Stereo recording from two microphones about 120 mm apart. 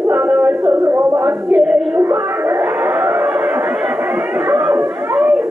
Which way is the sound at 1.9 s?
20° right (ahead or behind).